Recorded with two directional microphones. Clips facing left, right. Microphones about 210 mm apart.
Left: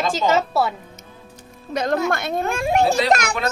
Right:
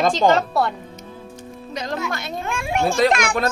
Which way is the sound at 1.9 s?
45° left (ahead or behind).